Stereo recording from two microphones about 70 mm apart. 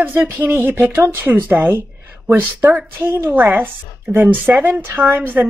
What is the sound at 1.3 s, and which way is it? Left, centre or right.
Speech, right.